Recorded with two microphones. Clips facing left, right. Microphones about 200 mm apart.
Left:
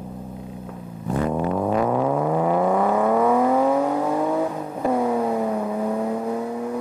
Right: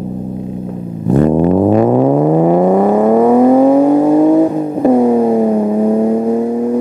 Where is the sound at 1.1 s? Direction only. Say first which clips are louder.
Right 12 dB; 40° right (ahead or behind).